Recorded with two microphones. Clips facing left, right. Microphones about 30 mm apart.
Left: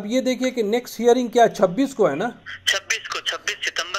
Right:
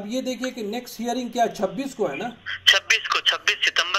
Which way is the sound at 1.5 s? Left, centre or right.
Left.